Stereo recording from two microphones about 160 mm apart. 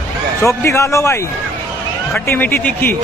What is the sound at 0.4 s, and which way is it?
Speech, 20° left (ahead or behind).